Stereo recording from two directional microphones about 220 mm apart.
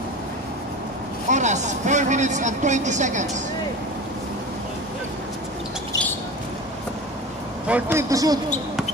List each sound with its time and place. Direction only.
1.3 s speech: 35° right (ahead or behind)
7.6 s a man's voice: 10° right (ahead or behind)